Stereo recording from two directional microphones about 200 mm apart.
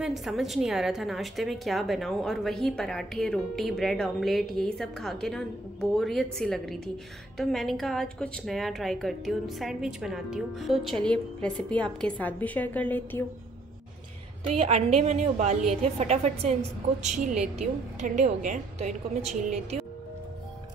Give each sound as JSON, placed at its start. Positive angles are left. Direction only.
{"t": 0.0, "sound": "a woman's voice", "side_deg": 0}
{"t": 14.5, "sound": "a woman's voice", "side_deg": -30}